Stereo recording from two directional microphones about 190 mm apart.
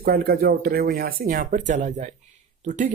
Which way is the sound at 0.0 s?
50° right (ahead or behind).